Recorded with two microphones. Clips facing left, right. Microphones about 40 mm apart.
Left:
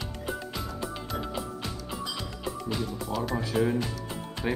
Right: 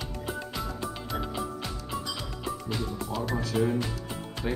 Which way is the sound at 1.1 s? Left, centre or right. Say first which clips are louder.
Right 3 dB; centre.